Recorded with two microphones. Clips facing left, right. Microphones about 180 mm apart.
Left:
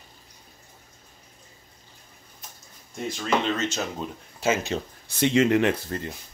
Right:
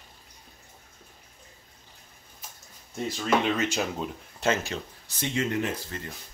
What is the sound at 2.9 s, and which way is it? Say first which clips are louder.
Speech: even; 5° right (ahead or behind).